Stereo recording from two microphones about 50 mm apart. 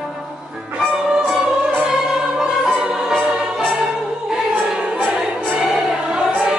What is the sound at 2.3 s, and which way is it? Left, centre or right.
Music, centre.